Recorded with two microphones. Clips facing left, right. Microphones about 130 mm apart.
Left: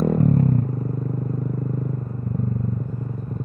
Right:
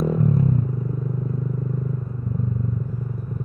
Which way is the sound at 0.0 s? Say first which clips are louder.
Left 2 dB; 60° left (ahead or behind).